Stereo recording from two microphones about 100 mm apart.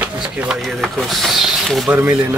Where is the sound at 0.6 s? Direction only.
Centre (ahead or behind).